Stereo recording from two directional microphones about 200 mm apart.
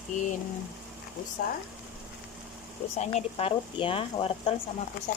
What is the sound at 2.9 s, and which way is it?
Speech, 35° left (ahead or behind).